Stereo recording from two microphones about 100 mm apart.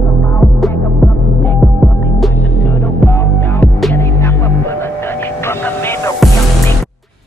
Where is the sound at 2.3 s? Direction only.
20° left (ahead or behind).